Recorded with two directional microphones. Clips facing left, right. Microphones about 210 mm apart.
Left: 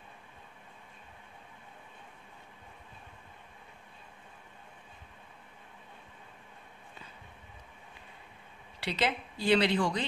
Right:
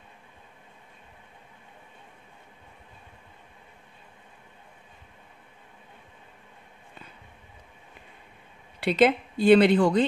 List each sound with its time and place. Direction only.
8.7 s speech: 55° right (ahead or behind)